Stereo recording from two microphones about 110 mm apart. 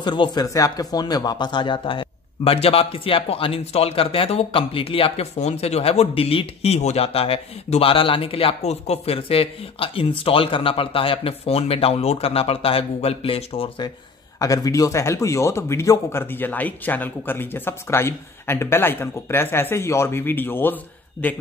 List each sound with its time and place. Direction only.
0.0 s speech: 45° left (ahead or behind)
14.4 s speech: 30° left (ahead or behind); by 21.3 s 15° left (ahead or behind)